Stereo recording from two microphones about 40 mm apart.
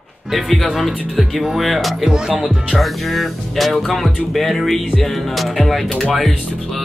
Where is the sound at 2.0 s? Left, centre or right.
Centre.